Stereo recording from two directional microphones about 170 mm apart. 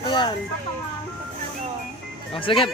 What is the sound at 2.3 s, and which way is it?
Speech, 30° left (ahead or behind).